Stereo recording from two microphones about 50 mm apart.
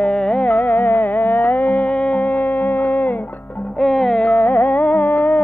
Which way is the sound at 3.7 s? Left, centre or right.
Centre.